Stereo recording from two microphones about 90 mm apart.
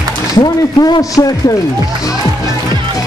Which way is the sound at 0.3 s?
50° left (ahead or behind).